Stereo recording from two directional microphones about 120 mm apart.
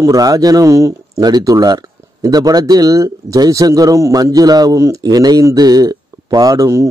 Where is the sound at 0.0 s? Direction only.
30° right (ahead or behind).